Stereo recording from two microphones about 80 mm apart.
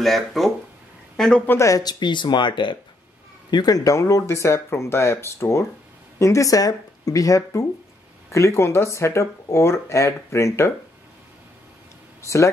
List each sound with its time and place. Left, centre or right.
0.0 s speech: centre
1.8 s speech: left
3.4 s speech: left